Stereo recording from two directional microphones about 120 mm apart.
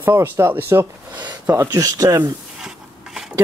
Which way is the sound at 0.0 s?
15° right (ahead or behind).